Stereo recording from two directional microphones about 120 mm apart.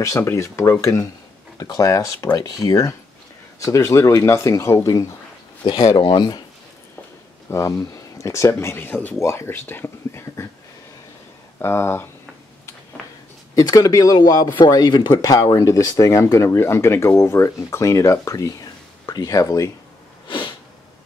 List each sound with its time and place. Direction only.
0.0 s speech: 25° left (ahead or behind)
7.4 s speech: 25° left (ahead or behind)
11.6 s speech: 20° left (ahead or behind)
13.6 s speech: 30° left (ahead or behind)
20.2 s sniff: 40° left (ahead or behind)